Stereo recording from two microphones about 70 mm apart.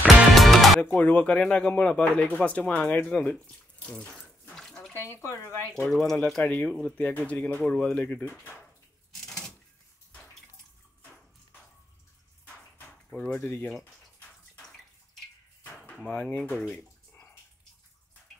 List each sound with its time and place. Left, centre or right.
0.3 s music: centre
0.9 s speech: centre
5.0 s speech: left
5.8 s speech: centre
6.4 s speech: left
13.2 s speech: left
16.1 s speech: centre